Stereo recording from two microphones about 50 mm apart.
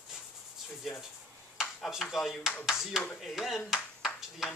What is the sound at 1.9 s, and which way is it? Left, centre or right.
Speech, centre.